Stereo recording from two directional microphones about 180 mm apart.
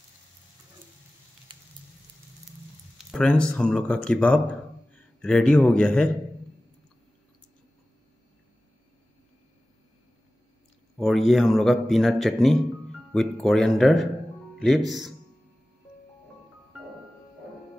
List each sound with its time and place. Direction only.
1.5 s a sound: 25° right (ahead or behind)
3.0 s speech: 5° left (ahead or behind)
11.0 s a man's voice: centre (ahead or behind)